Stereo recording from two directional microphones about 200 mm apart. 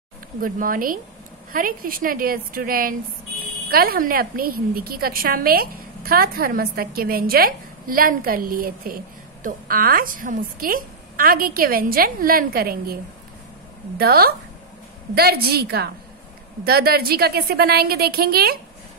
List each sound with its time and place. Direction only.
0.4 s a woman's voice: 45° right (ahead or behind)
13.9 s a woman's voice: 50° right (ahead or behind)